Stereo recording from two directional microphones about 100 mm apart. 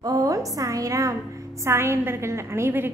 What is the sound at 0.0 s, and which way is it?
A woman's voice, 35° right (ahead or behind).